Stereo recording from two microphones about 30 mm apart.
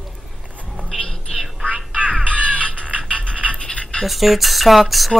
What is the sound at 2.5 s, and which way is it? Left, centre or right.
Music, left.